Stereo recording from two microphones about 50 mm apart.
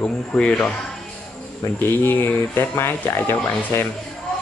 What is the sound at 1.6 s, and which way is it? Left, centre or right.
Speech, left.